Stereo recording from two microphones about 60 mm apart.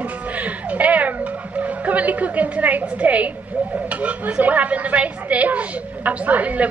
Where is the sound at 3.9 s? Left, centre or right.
Right.